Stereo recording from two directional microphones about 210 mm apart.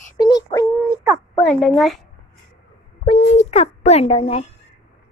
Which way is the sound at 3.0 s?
35° left (ahead or behind).